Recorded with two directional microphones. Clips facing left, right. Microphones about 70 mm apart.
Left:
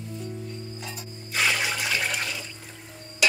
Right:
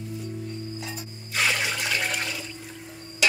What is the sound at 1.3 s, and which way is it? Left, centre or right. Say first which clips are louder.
Water: even; centre.